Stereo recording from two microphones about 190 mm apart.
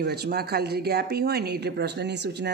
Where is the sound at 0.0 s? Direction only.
60° right (ahead or behind).